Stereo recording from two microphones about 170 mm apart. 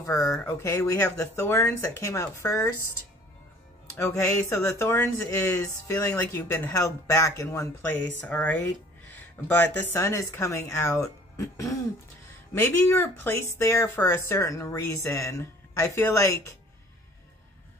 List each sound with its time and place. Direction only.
0.0 s speech: 20° left (ahead or behind)